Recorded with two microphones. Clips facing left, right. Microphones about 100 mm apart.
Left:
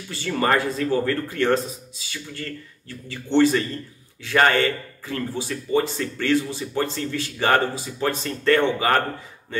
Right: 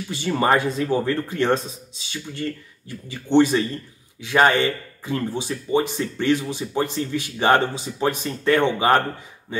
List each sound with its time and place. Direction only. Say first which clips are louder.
0.1 s speech: right 2 dB; 20° right (ahead or behind)